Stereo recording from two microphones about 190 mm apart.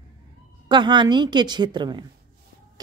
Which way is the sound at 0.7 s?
25° right (ahead or behind).